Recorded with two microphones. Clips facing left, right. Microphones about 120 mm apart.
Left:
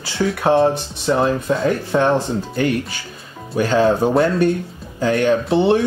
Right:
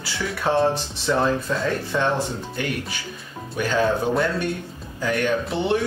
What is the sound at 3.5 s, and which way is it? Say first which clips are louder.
Speech: left 6 dB; 30° left (ahead or behind).